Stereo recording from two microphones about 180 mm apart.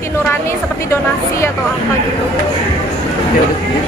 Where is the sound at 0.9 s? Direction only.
15° left (ahead or behind).